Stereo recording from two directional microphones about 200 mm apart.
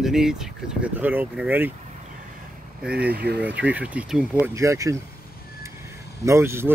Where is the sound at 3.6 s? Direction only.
5° right (ahead or behind).